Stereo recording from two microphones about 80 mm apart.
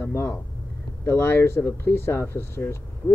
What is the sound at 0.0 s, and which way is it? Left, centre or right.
Speech, left.